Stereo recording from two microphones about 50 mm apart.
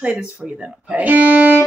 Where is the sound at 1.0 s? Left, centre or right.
Right.